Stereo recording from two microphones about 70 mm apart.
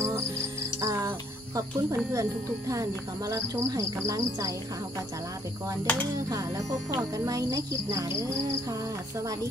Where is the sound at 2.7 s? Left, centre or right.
Right.